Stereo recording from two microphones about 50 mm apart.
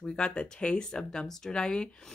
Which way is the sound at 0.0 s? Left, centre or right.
Centre.